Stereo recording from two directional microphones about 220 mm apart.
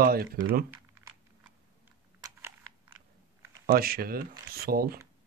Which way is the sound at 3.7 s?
45° right (ahead or behind).